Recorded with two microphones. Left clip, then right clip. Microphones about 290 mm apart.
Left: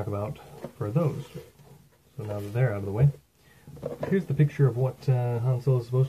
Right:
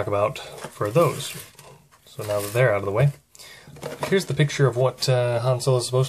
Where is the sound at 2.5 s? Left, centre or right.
Centre.